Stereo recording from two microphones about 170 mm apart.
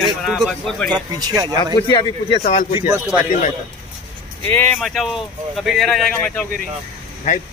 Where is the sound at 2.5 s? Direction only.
40° left (ahead or behind).